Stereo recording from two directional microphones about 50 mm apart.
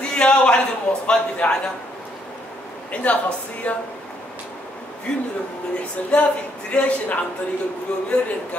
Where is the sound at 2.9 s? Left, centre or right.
Left.